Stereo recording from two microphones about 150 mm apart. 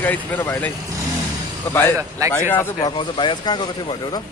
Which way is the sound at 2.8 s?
30° left (ahead or behind).